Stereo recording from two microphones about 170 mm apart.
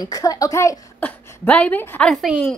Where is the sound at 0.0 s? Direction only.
20° left (ahead or behind).